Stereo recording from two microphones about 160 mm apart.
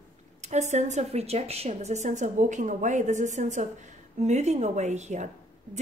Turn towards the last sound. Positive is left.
turn(degrees=-45)  # may be behind; listen again after turning